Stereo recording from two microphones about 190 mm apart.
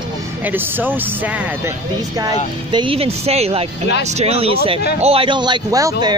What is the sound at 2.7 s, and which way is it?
Speech, 30° right (ahead or behind).